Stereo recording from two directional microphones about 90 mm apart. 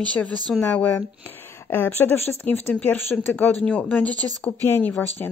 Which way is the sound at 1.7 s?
25° left (ahead or behind).